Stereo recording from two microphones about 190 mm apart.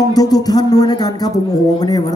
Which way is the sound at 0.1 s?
20° left (ahead or behind).